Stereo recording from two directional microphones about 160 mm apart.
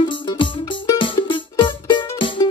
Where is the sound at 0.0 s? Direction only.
30° left (ahead or behind).